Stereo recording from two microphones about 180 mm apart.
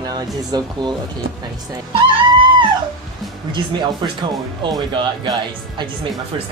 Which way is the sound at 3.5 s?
25° right (ahead or behind).